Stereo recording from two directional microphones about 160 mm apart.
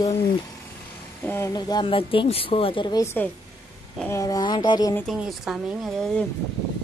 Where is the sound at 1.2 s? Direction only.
15° left (ahead or behind).